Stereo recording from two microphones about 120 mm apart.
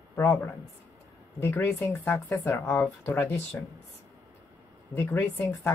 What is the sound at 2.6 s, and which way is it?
Speech, 10° left (ahead or behind).